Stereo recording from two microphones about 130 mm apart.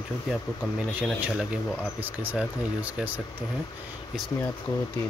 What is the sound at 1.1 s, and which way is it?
Speech, 10° right (ahead or behind).